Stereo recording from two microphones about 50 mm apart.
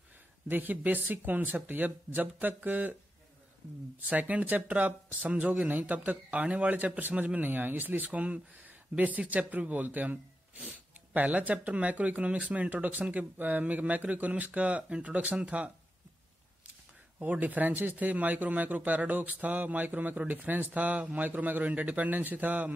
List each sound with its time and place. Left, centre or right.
0.5 s speech: right
4.1 s speech: right
17.2 s speech: right